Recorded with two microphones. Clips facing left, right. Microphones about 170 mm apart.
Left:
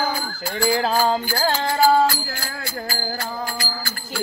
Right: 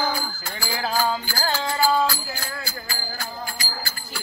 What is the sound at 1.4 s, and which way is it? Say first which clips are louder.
Music: left 4 dB; 60° left (ahead or behind).